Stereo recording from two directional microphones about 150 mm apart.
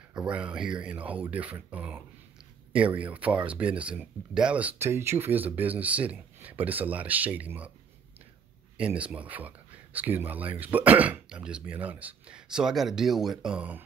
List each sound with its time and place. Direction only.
0.1 s speech: 5° right (ahead or behind)
8.7 s speech: 10° right (ahead or behind)